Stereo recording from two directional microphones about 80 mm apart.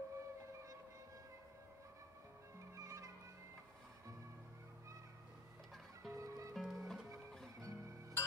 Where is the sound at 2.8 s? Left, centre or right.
Right.